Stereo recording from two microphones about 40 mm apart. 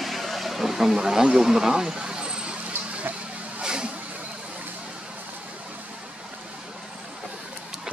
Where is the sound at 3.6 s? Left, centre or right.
Centre.